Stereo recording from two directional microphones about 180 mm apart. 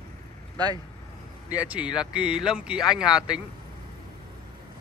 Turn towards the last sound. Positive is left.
turn(degrees=-5)  # may be behind; listen again after turning